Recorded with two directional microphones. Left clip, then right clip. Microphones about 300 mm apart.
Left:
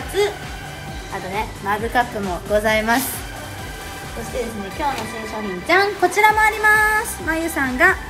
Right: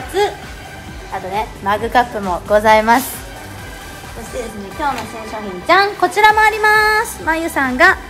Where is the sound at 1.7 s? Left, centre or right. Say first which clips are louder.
Right 5 dB; right.